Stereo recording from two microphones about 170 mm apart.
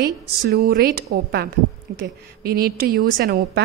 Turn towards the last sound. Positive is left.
turn(degrees=-60)  # may be behind; listen again after turning